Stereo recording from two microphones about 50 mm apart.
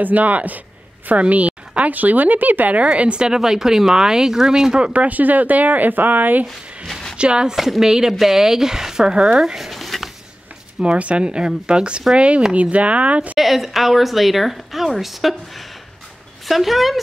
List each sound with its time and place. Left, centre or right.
0.0 s a woman's voice: right
5.0 s speech: right
6.9 s a sound: centre
7.2 s a woman's voice: centre
7.5 s speech: centre
9.4 s a sound: centre
10.8 s a woman's voice: right
13.4 s speech: centre